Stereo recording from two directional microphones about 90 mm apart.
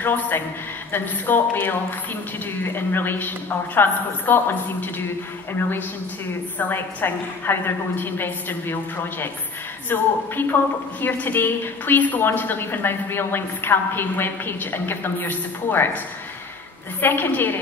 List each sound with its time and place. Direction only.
0.0 s a woman's voice: 20° left (ahead or behind)
9.8 s a woman's voice: 20° left (ahead or behind)
17.0 s a woman's voice: 25° left (ahead or behind)